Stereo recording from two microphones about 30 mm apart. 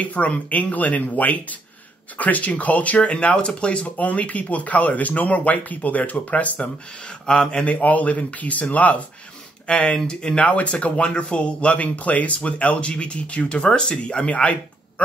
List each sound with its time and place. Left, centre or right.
0.0 s speech: left
3.3 s speech: left
3.9 s speech: left
9.7 s speech: left
10.5 s speech: left
11.8 s speech: left
12.4 s speech: left
14.3 s speech: left